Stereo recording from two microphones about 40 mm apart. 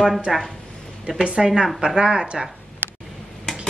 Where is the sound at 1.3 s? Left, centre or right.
Centre.